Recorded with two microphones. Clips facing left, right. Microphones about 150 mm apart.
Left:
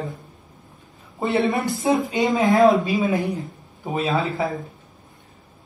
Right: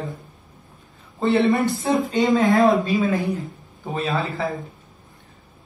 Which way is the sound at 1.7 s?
20° left (ahead or behind).